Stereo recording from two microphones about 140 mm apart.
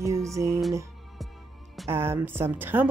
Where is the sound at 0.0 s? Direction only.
20° right (ahead or behind).